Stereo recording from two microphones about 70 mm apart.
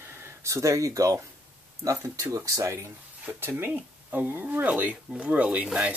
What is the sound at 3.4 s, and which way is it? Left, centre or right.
Speech, right.